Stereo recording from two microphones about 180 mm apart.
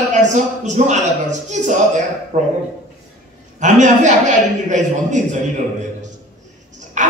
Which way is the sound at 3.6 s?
45° right (ahead or behind).